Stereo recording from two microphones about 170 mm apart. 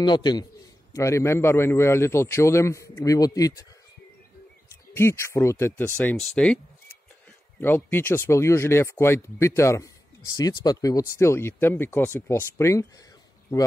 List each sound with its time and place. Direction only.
0.0 s a man's voice: 25° left (ahead or behind)
4.9 s speech: 15° left (ahead or behind)